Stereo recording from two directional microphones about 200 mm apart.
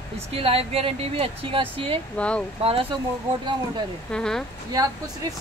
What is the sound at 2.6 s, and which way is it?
Speech, 30° right (ahead or behind).